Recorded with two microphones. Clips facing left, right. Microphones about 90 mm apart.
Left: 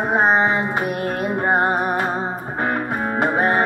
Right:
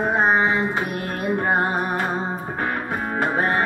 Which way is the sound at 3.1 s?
20° left (ahead or behind).